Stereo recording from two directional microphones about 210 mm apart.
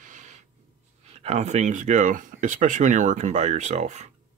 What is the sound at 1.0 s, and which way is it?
Speech, 30° right (ahead or behind).